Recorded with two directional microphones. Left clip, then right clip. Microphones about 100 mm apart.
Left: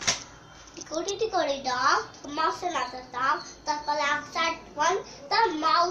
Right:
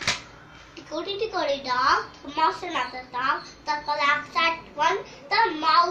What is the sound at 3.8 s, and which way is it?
A child's voice, 55° left (ahead or behind).